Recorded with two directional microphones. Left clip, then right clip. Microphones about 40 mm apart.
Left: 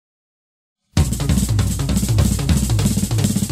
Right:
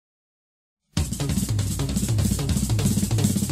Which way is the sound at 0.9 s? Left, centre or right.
Right.